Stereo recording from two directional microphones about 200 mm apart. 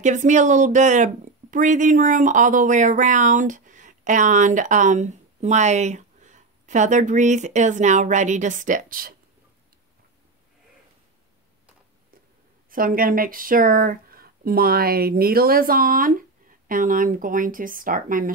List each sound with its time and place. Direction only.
0.0 s speech: 40° right (ahead or behind)
12.7 s speech: 45° right (ahead or behind)